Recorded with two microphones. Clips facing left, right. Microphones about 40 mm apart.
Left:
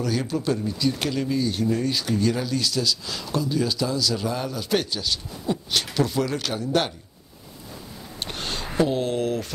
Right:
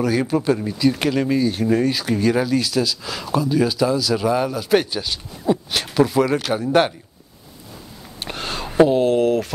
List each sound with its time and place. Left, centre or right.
0.0 s speech: right
1.1 s speech: right
1.4 s speech: centre
8.2 s a sound: centre
8.8 s speech: centre